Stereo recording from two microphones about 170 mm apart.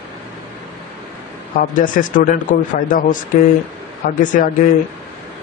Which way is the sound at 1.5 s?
50° left (ahead or behind).